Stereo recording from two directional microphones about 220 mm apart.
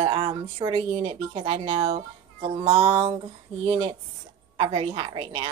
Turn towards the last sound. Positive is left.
turn(degrees=-25)  # may be behind; listen again after turning